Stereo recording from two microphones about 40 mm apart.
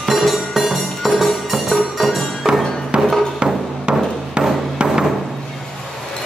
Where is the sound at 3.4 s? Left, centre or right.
Right.